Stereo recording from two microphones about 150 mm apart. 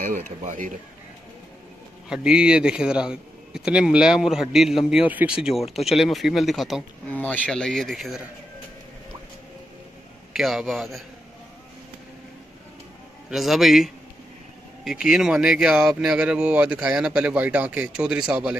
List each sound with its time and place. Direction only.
0.0 s speech: 60° right (ahead or behind)
2.0 s a man's voice: 5° right (ahead or behind)
7.1 s a man's voice: 10° left (ahead or behind)
10.3 s a man's voice: centre (ahead or behind)
13.3 s a man's voice: centre (ahead or behind)